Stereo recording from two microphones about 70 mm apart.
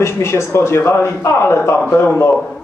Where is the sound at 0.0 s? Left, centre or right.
Left.